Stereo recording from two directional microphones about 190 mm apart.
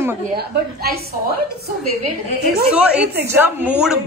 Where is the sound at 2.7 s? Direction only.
5° right (ahead or behind).